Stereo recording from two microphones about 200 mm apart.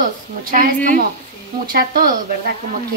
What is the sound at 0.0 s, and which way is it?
A woman's voice, 45° right (ahead or behind).